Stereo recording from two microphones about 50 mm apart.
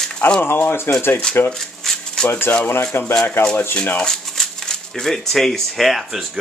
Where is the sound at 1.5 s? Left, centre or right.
Centre.